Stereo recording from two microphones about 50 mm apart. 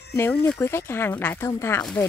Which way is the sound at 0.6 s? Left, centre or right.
Left.